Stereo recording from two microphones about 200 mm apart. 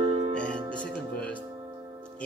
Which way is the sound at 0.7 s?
5° left (ahead or behind).